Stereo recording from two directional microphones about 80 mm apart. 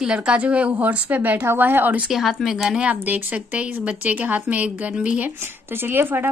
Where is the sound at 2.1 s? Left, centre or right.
Centre.